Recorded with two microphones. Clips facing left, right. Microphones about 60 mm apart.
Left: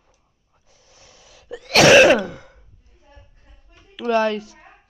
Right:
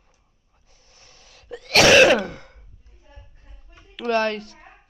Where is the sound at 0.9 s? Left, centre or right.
Centre.